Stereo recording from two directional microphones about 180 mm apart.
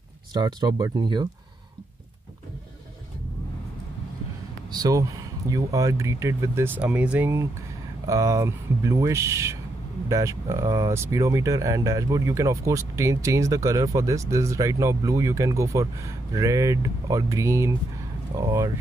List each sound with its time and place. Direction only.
0.3 s speech: 20° right (ahead or behind)
4.7 s speech: 20° right (ahead or behind)